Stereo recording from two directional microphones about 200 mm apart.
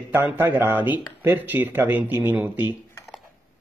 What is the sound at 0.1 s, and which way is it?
Speech, 10° right (ahead or behind).